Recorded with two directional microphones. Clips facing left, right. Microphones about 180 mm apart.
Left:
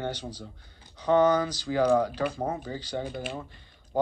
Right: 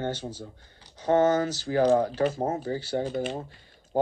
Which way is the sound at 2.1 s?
45° right (ahead or behind).